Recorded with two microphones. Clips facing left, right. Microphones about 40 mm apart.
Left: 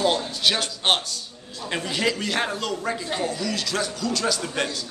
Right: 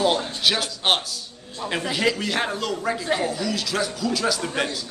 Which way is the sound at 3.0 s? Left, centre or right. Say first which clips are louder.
Right 3 dB; centre.